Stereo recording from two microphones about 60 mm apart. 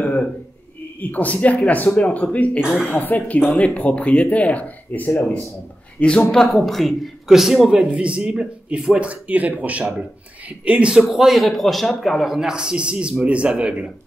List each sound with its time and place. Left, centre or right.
0.0 s a sound: left
1.1 s speech: left
2.7 s speech: centre
3.0 s speech: left; by 11.0 s centre
11.0 s speech: centre